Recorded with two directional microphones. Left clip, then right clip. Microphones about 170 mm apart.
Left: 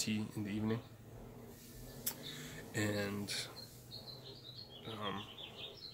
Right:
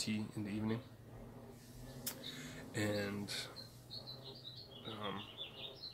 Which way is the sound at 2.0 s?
10° left (ahead or behind).